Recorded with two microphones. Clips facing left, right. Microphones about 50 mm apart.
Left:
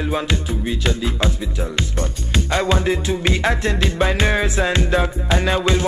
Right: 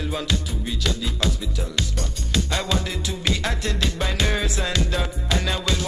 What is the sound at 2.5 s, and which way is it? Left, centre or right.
Music, left.